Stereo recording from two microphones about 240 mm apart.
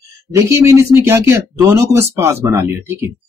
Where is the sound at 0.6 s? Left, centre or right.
Centre.